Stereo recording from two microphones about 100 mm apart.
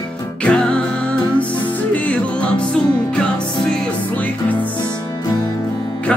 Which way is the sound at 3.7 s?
15° left (ahead or behind).